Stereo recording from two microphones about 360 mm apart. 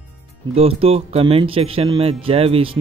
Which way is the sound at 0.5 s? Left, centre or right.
Centre.